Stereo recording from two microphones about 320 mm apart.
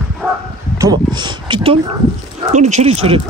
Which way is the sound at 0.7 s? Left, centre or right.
Centre.